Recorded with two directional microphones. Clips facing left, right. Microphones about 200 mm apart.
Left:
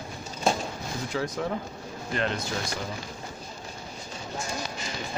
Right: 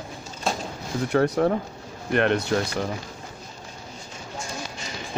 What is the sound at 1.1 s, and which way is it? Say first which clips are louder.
Speech: right 10 dB; 60° right (ahead or behind).